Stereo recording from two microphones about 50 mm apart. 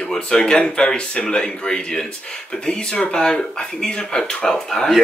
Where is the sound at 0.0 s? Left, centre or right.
Centre.